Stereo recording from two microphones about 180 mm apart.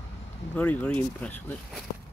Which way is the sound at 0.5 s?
10° left (ahead or behind).